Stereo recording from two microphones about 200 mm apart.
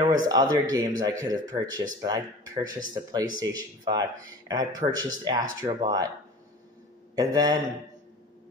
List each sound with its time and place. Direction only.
0.3 s speech: 20° right (ahead or behind)
7.2 s speech: 20° right (ahead or behind)